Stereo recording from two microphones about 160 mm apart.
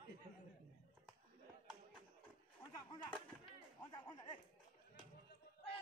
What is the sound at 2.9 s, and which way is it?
Speech, 30° left (ahead or behind).